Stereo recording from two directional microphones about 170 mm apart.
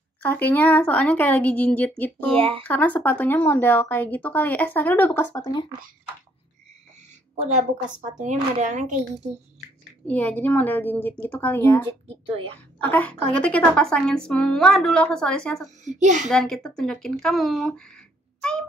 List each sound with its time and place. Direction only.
0.2 s speech: 10° left (ahead or behind)
2.3 s a woman's voice: 35° right (ahead or behind)
2.6 s speech: 10° left (ahead or behind); by 5.7 s 25° left (ahead or behind)
7.5 s a woman's voice: 45° right (ahead or behind)
10.0 s speech: 10° left (ahead or behind)
12.3 s a woman's voice: 35° right (ahead or behind)
12.7 s a woman's voice: 10° left (ahead or behind)
15.8 s a woman's voice: 45° right (ahead or behind)
16.3 s speech: centre (ahead or behind)